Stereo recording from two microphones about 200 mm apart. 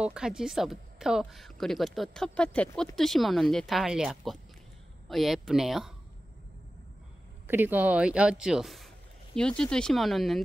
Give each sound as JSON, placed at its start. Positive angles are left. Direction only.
{"t": 0.0, "sound": "speech", "side_deg": -5}
{"t": 7.4, "sound": "speech", "side_deg": -10}